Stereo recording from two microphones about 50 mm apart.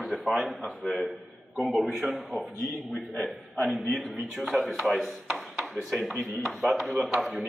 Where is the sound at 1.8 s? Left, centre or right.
Centre.